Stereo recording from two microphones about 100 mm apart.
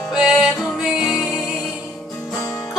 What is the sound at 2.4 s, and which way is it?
Music, 40° left (ahead or behind).